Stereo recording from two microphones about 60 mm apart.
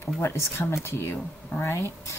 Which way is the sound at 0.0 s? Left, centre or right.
Left.